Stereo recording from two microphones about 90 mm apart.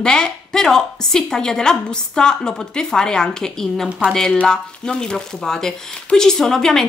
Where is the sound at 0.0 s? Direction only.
5° left (ahead or behind).